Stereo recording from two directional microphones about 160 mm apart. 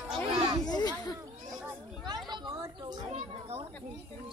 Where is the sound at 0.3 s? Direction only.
25° right (ahead or behind).